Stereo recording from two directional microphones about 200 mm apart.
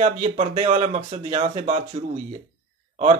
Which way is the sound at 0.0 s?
30° right (ahead or behind).